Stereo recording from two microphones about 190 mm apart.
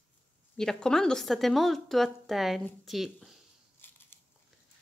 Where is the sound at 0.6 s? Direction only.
5° left (ahead or behind).